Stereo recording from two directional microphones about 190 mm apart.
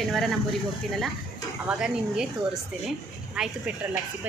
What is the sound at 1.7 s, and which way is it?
A woman's voice, 5° right (ahead or behind).